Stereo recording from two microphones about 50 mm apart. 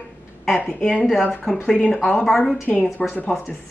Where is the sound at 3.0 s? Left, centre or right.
Left.